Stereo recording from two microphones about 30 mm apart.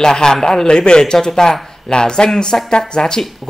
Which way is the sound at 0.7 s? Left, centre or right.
Left.